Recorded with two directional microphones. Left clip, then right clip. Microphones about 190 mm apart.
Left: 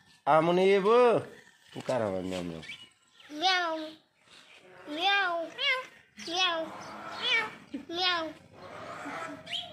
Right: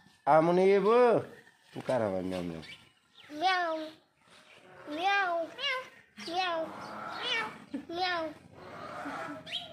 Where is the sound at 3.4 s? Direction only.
20° right (ahead or behind).